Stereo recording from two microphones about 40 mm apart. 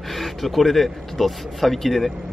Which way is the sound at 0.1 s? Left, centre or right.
Centre.